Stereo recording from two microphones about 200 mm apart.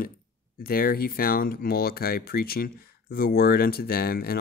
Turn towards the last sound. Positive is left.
turn(degrees=50)  # may be behind; listen again after turning